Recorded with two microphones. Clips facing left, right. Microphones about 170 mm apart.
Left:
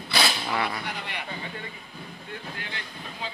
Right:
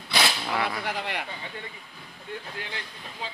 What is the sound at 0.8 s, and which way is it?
Speech, 90° right.